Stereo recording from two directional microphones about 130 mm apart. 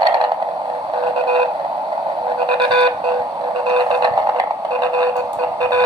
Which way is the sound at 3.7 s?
35° right (ahead or behind).